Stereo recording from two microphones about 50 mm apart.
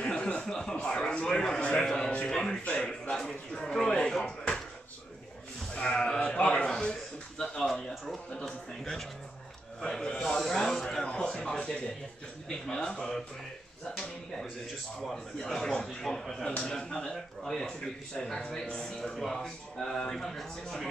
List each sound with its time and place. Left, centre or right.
0.0 s speech: centre
2.3 s speech: centre
2.6 s speech: left
2.9 s speech: centre
5.8 s speech: centre